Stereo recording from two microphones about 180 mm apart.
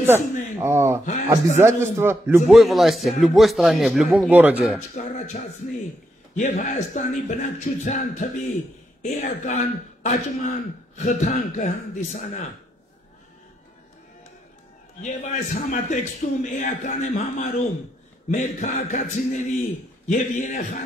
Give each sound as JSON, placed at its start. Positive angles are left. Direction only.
{"t": 0.0, "sound": "a man's voice", "side_deg": -15}
{"t": 4.9, "sound": "a man's voice", "side_deg": 45}
{"t": 15.0, "sound": "a man's voice", "side_deg": 40}